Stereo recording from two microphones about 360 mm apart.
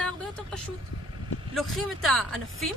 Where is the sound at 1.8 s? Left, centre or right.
Centre.